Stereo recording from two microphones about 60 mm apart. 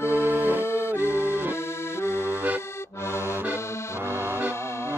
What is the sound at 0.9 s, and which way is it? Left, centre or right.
Music, right.